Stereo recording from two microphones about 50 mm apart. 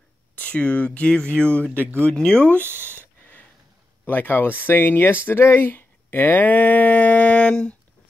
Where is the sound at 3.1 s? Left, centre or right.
Left.